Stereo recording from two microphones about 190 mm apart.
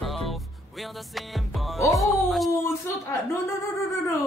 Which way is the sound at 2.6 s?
15° left (ahead or behind).